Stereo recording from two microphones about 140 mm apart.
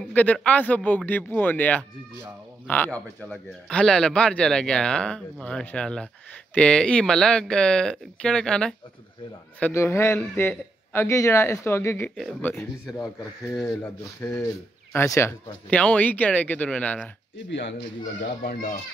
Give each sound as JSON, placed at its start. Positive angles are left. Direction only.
{"t": 0.0, "sound": "a man's voice", "side_deg": 10}
{"t": 9.6, "sound": "a man's voice", "side_deg": 15}
{"t": 14.3, "sound": "a man's voice", "side_deg": 20}
{"t": 18.4, "sound": "a child's voice", "side_deg": 85}